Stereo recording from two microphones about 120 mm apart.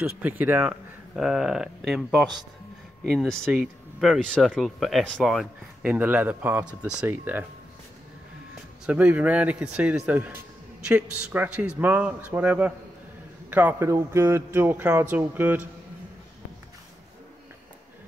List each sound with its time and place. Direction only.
0.0 s speech: 15° right (ahead or behind)
4.2 s speech: 5° left (ahead or behind); by 7.4 s 15° right (ahead or behind)
8.8 s a man's voice: 10° right (ahead or behind)